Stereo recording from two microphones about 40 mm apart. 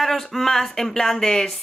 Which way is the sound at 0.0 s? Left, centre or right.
Centre.